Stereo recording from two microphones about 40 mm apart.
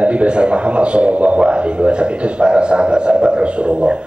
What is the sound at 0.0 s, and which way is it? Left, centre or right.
A man's voice, right.